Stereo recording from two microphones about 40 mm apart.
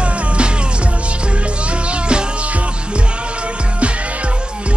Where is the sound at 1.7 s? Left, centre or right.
Right.